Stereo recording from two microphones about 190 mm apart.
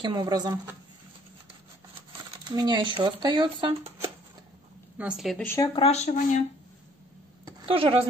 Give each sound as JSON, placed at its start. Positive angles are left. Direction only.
{"t": 0.0, "sound": "speech", "side_deg": -20}
{"t": 2.5, "sound": "speech", "side_deg": -20}
{"t": 4.9, "sound": "a woman's voice", "side_deg": -5}
{"t": 5.5, "sound": "speech", "side_deg": 15}
{"t": 5.8, "sound": "speech", "side_deg": 35}
{"t": 7.4, "sound": "a sound", "side_deg": -30}